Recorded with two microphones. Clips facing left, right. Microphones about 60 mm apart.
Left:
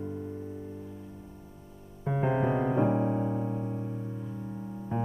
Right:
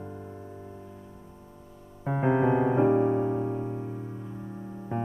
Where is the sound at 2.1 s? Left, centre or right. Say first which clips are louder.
Right 4 dB; right.